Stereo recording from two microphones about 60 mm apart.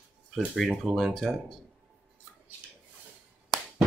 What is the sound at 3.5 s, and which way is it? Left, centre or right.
Chop, centre.